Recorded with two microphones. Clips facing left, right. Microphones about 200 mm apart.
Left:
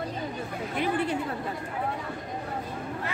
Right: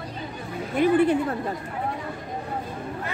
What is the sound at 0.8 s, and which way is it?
Speech, 45° right (ahead or behind).